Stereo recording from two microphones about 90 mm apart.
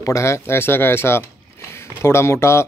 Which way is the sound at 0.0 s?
35° left (ahead or behind).